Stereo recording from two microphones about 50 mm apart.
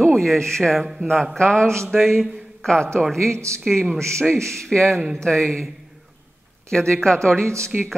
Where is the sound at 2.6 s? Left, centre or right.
Centre.